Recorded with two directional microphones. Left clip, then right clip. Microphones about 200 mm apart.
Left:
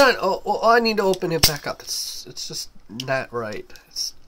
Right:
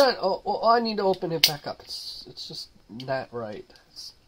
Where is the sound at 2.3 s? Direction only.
40° left (ahead or behind).